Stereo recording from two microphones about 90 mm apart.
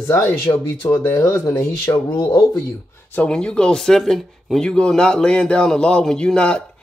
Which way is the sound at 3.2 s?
10° left (ahead or behind).